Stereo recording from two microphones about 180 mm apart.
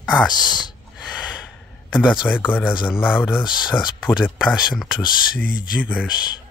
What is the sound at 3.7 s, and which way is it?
Speech, 25° left (ahead or behind).